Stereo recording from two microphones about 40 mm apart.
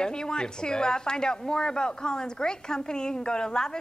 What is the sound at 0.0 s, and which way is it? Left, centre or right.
Speech, centre.